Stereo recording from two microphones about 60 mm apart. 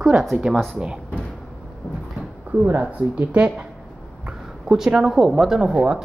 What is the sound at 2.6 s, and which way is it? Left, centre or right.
Speech, right.